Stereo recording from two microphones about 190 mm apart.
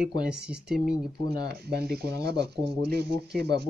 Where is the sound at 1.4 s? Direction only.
55° right (ahead or behind).